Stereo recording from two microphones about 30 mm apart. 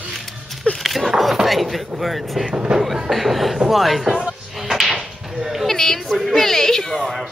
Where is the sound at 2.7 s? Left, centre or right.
Right.